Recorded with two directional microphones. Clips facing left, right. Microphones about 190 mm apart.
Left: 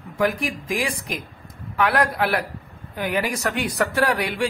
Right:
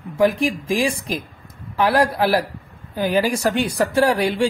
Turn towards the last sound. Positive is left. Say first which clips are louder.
# right 5 dB
turn(degrees=-30)  # may be behind; listen again after turning